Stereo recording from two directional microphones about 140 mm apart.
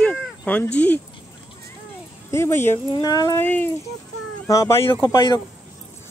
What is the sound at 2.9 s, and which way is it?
Speech, 25° left (ahead or behind).